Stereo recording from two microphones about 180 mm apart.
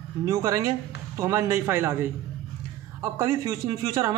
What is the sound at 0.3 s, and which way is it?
A man's voice, 15° right (ahead or behind).